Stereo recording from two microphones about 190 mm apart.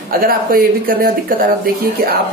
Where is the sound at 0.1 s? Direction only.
50° right (ahead or behind).